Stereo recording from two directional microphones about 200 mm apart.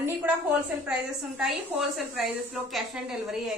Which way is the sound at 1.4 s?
Centre (ahead or behind).